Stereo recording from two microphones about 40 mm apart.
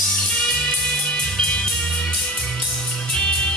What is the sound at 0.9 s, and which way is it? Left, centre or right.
Music, left.